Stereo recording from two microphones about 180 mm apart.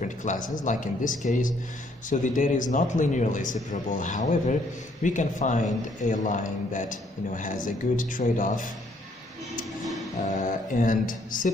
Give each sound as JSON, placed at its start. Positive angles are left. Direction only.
{"t": 0.0, "sound": "speech", "side_deg": 45}
{"t": 10.2, "sound": "speech", "side_deg": 45}